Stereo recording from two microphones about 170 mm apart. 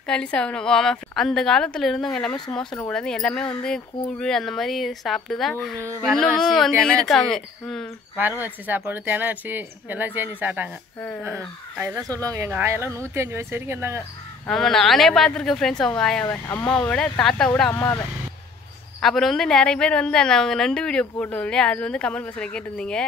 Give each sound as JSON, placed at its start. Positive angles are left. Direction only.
{"t": 0.0, "sound": "a woman's voice", "side_deg": 5}
{"t": 8.2, "sound": "speech", "side_deg": -10}
{"t": 14.5, "sound": "a woman's voice", "side_deg": 0}
{"t": 18.9, "sound": "a woman's voice", "side_deg": 0}